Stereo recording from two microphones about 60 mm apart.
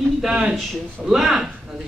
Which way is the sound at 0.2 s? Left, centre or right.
Centre.